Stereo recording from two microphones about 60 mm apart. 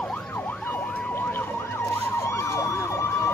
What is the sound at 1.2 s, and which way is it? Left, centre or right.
Emergency vehicle, left.